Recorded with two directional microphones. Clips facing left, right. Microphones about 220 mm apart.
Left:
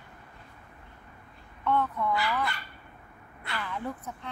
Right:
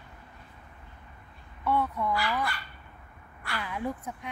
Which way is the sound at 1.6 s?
10° right (ahead or behind).